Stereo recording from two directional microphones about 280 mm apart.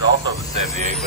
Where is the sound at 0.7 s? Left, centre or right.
Right.